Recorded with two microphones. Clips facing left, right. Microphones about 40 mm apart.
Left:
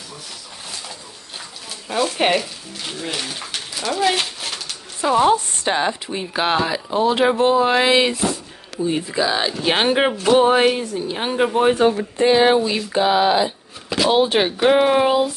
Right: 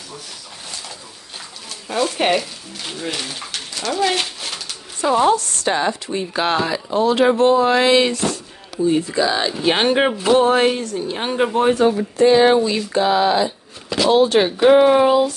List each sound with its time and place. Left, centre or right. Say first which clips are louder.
1.9 s speech: even; centre
5.3 s speech: even; left; by 11.7 s centre
11.9 s speech: right 3 dB; centre